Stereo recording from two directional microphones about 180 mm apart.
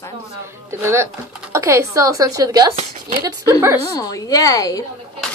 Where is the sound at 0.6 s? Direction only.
15° right (ahead or behind).